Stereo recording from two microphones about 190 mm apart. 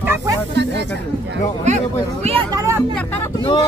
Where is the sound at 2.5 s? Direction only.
15° right (ahead or behind).